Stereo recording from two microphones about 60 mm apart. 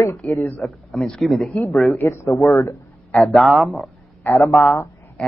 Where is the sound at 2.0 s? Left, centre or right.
Left.